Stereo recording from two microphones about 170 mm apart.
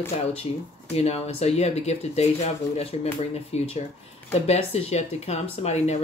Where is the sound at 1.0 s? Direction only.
40° left (ahead or behind).